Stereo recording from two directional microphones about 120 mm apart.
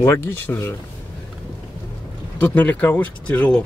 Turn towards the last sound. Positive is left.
turn(degrees=10)  # may be behind; listen again after turning